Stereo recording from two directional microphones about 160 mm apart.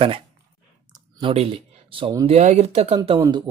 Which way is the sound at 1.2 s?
35° right (ahead or behind).